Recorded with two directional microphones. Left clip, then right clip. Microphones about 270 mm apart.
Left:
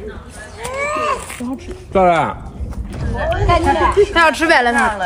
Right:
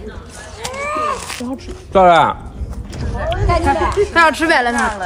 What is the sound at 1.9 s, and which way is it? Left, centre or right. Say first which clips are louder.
Speech: right 4 dB; centre.